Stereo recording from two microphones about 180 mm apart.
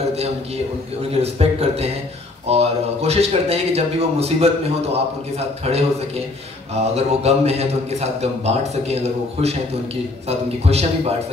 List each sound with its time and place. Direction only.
1.1 s a man's voice: 35° right (ahead or behind)